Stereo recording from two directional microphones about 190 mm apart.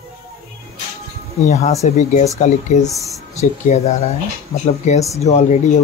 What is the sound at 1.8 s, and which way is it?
Speech, 35° left (ahead or behind).